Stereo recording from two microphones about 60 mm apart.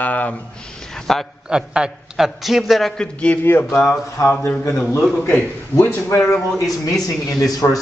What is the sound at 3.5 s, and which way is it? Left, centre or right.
Speech, left.